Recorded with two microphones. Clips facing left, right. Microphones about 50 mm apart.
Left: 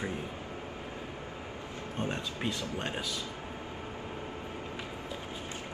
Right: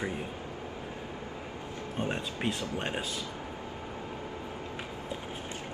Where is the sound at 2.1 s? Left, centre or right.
Right.